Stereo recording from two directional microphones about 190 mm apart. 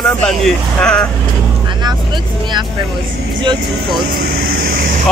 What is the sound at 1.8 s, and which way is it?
Speech, 25° right (ahead or behind).